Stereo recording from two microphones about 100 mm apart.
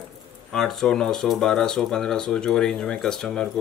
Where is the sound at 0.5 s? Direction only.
5° left (ahead or behind).